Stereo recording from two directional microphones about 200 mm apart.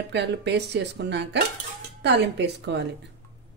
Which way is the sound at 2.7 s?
60° right (ahead or behind).